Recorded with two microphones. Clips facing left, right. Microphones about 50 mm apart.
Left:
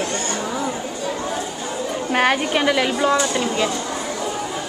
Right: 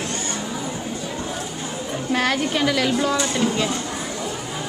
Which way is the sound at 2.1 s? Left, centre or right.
Left.